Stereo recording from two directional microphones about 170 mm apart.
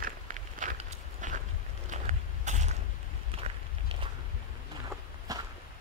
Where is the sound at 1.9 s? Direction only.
45° right (ahead or behind).